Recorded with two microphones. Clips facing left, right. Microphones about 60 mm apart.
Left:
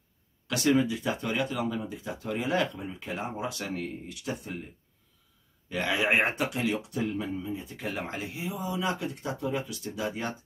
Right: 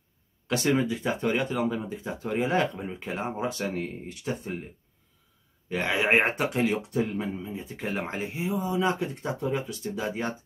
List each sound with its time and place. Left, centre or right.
0.5 s speech: right
5.7 s speech: right